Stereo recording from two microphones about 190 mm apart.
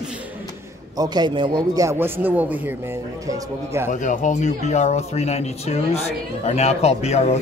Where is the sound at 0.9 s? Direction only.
20° right (ahead or behind).